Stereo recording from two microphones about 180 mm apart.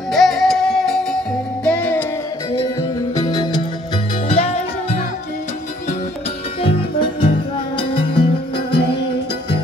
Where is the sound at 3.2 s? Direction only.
25° left (ahead or behind).